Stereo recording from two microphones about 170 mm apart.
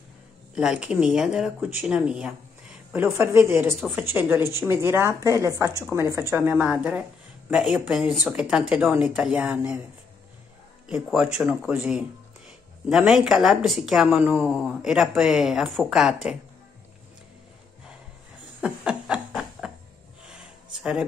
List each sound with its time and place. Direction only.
0.6 s a woman's voice: 5° right (ahead or behind)
10.9 s a woman's voice: 5° right (ahead or behind)
18.6 s a sound: 5° right (ahead or behind)